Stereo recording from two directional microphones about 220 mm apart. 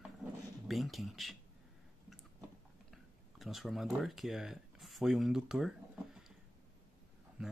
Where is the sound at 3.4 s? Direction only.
Centre (ahead or behind).